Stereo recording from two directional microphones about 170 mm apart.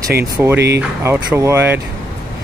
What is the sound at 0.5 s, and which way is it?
Speech, 80° right.